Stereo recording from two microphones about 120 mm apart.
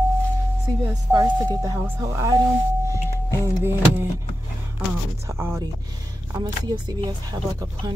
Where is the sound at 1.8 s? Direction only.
25° right (ahead or behind).